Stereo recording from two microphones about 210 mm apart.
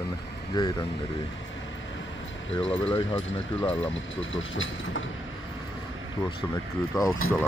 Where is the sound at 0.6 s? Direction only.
20° left (ahead or behind).